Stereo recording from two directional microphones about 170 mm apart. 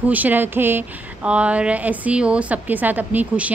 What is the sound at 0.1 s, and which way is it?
Speech, 10° right (ahead or behind).